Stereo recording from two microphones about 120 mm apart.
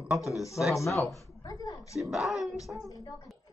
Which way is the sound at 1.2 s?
30° left (ahead or behind).